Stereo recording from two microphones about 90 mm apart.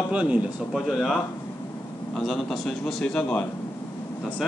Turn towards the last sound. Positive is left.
turn(degrees=15)  # may be behind; listen again after turning